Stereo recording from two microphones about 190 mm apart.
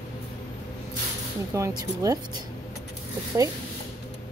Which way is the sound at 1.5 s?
20° right (ahead or behind).